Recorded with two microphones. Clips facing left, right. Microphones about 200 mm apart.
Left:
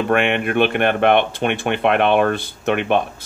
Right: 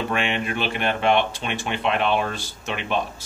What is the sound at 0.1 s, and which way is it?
Speech, 60° left (ahead or behind).